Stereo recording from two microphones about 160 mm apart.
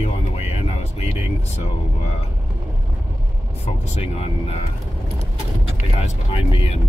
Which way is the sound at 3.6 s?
40° left (ahead or behind).